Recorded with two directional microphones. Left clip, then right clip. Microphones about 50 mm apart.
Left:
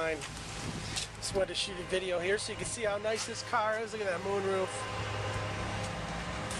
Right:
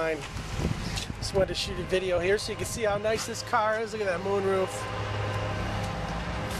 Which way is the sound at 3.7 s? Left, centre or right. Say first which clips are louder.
Right 5 dB; right.